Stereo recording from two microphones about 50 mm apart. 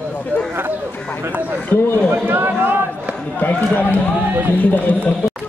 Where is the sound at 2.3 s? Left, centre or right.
Right.